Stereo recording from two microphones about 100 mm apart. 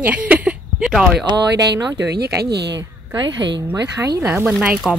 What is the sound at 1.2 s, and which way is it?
Speech, 50° right (ahead or behind).